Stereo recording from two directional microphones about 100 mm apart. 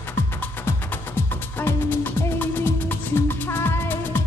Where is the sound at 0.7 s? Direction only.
25° left (ahead or behind).